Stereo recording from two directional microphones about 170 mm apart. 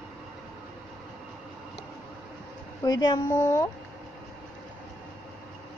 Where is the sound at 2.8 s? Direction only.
25° left (ahead or behind).